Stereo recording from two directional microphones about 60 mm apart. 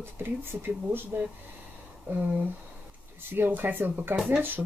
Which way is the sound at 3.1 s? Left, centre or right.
Right.